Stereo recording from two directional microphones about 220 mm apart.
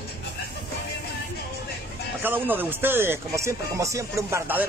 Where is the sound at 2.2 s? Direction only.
10° right (ahead or behind).